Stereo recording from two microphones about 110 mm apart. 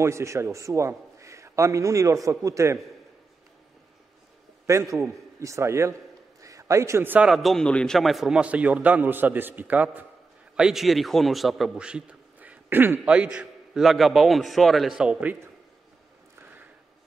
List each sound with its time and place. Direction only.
0.0 s a man's voice: 25° right (ahead or behind)
4.6 s a man's voice: 25° right (ahead or behind)
7.2 s a man's voice: centre (ahead or behind)
10.5 s a man's voice: 5° right (ahead or behind)